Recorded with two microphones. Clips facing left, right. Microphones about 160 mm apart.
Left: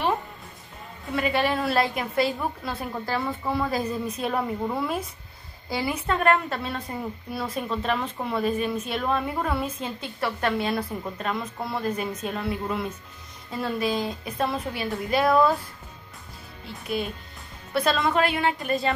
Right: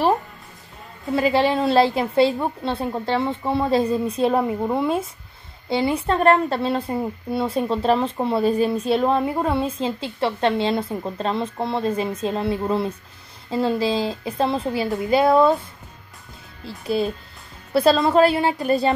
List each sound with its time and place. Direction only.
1.1 s a woman's voice: 30° right (ahead or behind)
16.6 s a woman's voice: 30° right (ahead or behind)